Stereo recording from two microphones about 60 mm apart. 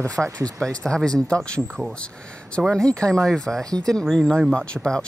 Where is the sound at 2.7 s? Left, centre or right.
Centre.